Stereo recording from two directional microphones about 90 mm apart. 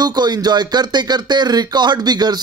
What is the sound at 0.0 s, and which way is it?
Speech, 50° right (ahead or behind).